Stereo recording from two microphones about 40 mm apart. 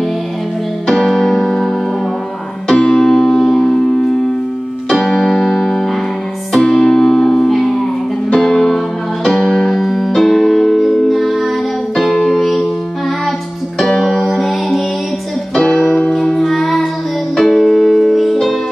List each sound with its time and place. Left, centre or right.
0.9 s keyboard: centre
2.7 s electric piano: centre
5.0 s music: centre
13.7 s music: centre
15.5 s music: centre